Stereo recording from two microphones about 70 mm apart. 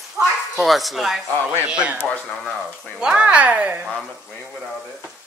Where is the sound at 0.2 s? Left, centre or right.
Right.